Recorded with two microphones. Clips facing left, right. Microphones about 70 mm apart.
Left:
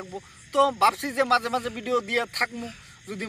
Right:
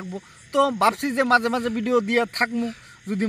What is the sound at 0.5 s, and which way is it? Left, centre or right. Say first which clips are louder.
Speech: right 1 dB; right.